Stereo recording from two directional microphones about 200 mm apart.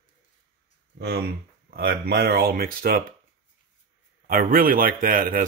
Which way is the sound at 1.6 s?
50° right (ahead or behind).